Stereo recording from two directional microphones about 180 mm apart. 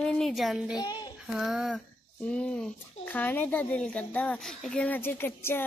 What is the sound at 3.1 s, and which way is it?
Speech, 10° left (ahead or behind).